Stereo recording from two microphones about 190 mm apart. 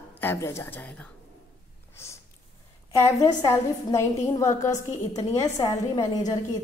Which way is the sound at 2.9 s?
15° left (ahead or behind).